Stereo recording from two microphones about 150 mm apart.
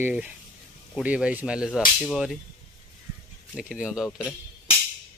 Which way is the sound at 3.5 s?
5° right (ahead or behind).